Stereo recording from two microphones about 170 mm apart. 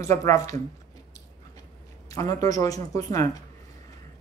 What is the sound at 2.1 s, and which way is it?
A man's voice, 20° left (ahead or behind).